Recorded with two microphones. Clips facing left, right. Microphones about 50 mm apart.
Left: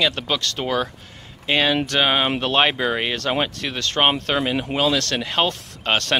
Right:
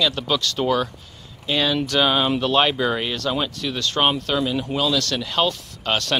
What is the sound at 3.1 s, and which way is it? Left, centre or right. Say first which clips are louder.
A man's voice: left 1 dB; left.